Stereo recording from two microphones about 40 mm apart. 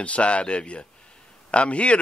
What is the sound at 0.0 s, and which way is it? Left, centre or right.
A man's voice, left.